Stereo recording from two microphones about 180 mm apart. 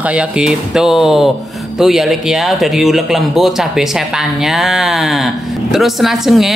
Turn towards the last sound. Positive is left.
turn(degrees=0)  # may be behind; listen again after turning